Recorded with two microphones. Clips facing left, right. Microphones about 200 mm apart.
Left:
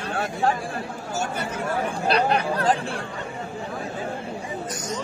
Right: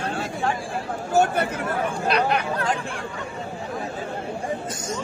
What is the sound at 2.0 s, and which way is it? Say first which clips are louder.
Chatter: left 2 dB; 35° left (ahead or behind).